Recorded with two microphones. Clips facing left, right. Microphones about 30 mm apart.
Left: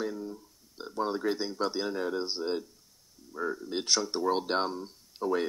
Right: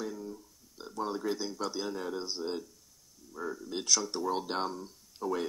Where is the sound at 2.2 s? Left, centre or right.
Left.